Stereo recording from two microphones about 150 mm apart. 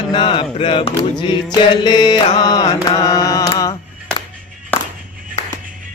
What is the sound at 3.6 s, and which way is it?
Music, 25° left (ahead or behind).